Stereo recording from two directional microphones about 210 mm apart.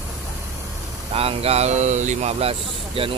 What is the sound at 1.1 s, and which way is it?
Speech, 30° right (ahead or behind).